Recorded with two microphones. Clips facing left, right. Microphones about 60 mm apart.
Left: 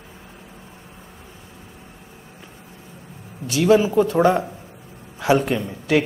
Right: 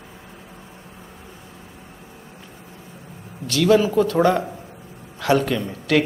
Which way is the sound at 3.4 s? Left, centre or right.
Centre.